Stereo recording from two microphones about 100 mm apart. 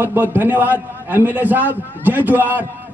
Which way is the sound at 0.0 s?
20° right (ahead or behind).